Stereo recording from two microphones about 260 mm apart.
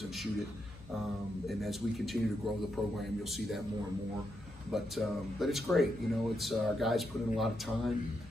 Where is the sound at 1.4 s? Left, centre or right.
Centre.